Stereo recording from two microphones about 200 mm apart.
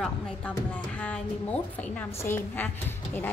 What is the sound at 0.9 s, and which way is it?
A woman's voice, 5° left (ahead or behind).